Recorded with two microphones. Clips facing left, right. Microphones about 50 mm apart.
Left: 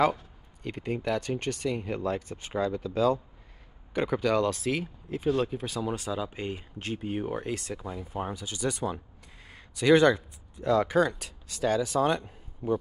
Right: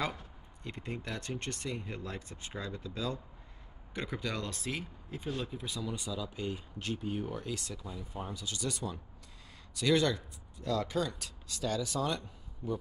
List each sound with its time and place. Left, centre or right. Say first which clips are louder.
0.6 s speech: left 8 dB; left
3.9 s speech: left 11 dB; left
5.5 s speech: left 7 dB; left
5.8 s speech: left 7 dB; left
8.2 s speech: left 7 dB; left